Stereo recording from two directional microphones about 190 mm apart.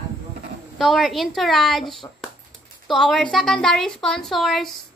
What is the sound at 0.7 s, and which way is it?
A woman's voice, centre (ahead or behind).